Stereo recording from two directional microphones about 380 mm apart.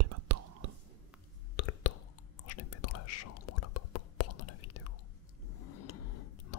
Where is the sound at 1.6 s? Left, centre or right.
Left.